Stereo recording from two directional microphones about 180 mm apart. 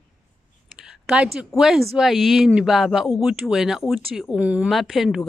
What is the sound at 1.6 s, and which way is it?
Speech, 5° right (ahead or behind).